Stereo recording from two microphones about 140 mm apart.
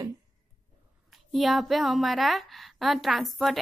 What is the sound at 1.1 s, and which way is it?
A woman's voice, centre (ahead or behind).